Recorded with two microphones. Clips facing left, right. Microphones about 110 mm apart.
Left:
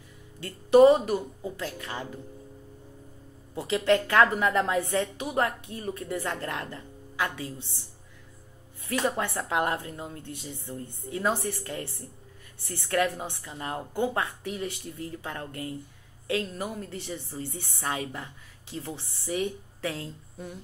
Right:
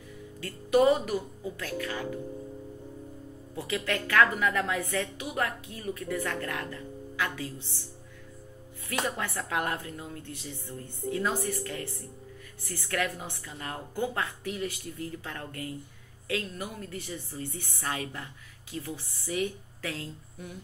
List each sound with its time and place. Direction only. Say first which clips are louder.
0.4 s a woman's voice: left 6 dB; 30° left (ahead or behind)
3.5 s a woman's voice: left 8 dB; 25° left (ahead or behind)
9.0 s a woman's voice: left 6 dB; 30° left (ahead or behind)